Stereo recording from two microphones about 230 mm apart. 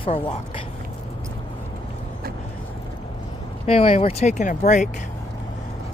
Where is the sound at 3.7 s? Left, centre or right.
Left.